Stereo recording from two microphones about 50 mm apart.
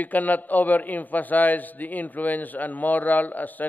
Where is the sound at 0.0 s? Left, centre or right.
Left.